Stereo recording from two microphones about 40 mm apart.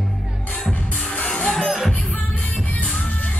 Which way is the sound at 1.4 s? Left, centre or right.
Centre.